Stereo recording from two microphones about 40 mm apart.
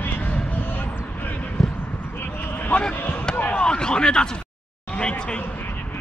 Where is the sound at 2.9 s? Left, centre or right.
Left.